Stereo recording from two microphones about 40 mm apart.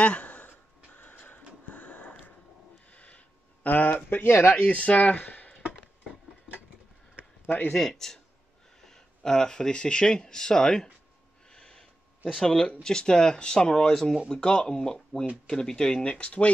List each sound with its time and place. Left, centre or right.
0.0 s a sound: left
0.5 s a sound: left
1.1 s a sound: left
3.6 s speech: left
4.6 s speech: left
7.4 s speech: left
7.7 s speech: centre
11.5 s snort: centre
12.4 s speech: centre
16.1 s speech: left